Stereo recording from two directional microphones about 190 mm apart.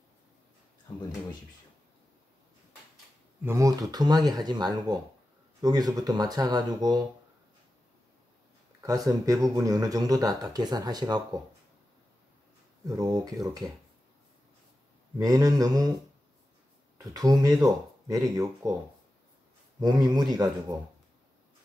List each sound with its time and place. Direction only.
3.4 s speech: 15° right (ahead or behind)
8.8 s speech: 20° right (ahead or behind)
12.8 s speech: 20° right (ahead or behind)
15.1 s speech: 20° right (ahead or behind)
17.0 s speech: 20° right (ahead or behind)
19.8 s speech: 25° right (ahead or behind)